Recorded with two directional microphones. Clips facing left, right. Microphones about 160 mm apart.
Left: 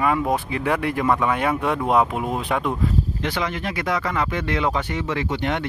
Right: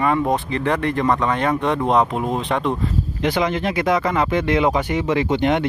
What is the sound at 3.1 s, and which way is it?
Speech, 15° right (ahead or behind).